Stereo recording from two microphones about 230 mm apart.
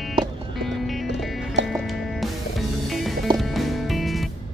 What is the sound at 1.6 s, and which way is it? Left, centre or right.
Music, right.